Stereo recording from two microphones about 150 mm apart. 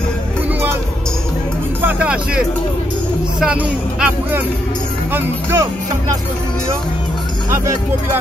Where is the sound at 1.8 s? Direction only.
10° right (ahead or behind).